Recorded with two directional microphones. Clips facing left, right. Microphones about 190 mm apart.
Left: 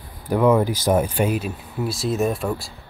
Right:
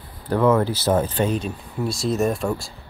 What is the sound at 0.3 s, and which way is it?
Speech, 10° left (ahead or behind).